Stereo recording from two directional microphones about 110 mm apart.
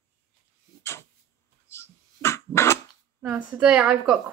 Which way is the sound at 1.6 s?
25° left (ahead or behind).